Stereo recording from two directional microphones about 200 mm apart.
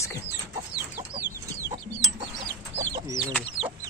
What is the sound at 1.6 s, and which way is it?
Chicken, 20° right (ahead or behind).